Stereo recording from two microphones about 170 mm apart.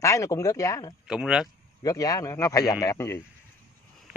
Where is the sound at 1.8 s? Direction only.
20° left (ahead or behind).